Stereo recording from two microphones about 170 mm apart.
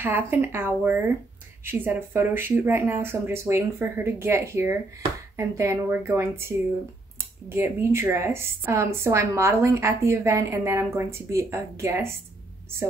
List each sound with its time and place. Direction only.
0.0 s a woman's voice: 15° right (ahead or behind)